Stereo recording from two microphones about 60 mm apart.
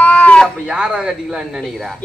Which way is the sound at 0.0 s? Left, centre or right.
Left.